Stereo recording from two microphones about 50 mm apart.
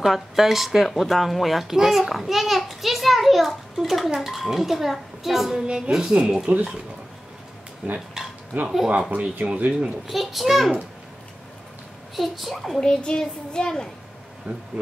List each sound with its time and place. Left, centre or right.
0.0 s a woman's voice: centre
7.8 s a woman's voice: right
10.0 s speech: centre
12.2 s speech: centre
12.8 s a child's voice: centre
14.5 s speech: right